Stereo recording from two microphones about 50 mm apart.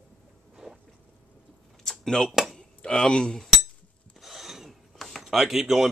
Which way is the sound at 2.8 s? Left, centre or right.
Centre.